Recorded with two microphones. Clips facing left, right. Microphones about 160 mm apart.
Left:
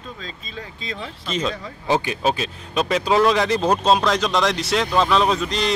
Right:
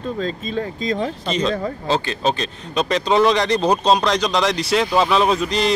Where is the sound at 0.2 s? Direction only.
45° right (ahead or behind).